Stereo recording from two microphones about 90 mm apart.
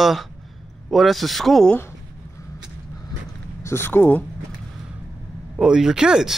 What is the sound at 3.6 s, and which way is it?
Speech, 25° left (ahead or behind).